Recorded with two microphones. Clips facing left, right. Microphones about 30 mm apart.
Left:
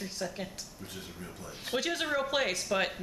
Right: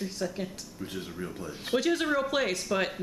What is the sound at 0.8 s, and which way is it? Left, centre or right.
Speech, centre.